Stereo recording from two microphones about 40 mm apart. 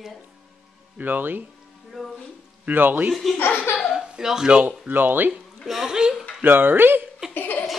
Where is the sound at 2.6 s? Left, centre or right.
Right.